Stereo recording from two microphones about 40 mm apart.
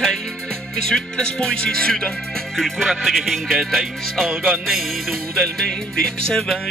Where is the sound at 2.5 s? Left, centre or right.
Centre.